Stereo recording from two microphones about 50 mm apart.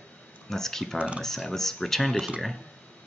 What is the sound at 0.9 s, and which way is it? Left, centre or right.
Speech, right.